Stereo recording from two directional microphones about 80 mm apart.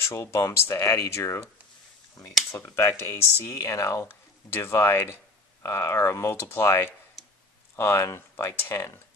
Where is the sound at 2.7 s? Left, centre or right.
Left.